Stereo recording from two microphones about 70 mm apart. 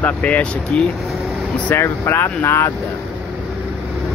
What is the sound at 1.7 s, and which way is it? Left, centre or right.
Speech, left.